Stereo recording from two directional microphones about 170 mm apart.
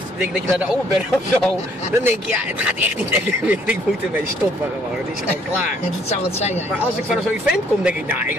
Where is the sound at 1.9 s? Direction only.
10° right (ahead or behind).